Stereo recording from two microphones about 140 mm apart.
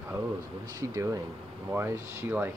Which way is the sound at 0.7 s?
25° right (ahead or behind).